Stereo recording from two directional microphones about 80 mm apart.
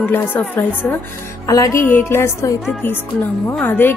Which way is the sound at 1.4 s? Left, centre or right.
Left.